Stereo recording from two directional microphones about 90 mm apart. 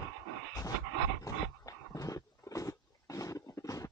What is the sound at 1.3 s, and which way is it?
Dog, 40° left (ahead or behind).